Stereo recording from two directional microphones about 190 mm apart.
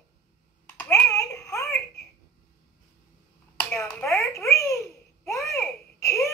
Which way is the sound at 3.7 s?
10° left (ahead or behind).